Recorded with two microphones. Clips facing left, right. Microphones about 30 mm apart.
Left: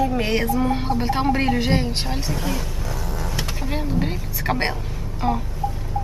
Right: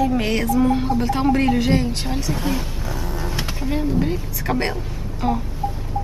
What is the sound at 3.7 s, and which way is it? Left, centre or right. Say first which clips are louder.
Speech: right 5 dB; centre.